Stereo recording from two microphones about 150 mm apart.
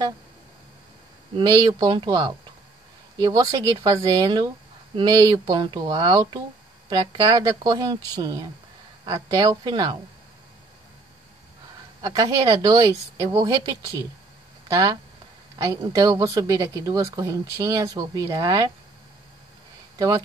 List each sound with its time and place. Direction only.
1.3 s a woman's voice: 30° right (ahead or behind)
12.0 s a woman's voice: 25° right (ahead or behind)
20.0 s a woman's voice: 25° right (ahead or behind)